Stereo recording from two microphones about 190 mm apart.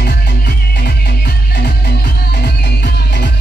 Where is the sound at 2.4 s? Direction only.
60° left (ahead or behind).